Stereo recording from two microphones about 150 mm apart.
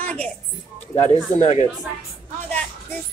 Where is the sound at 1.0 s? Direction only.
50° left (ahead or behind).